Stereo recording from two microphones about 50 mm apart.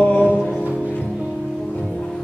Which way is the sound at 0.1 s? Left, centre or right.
Left.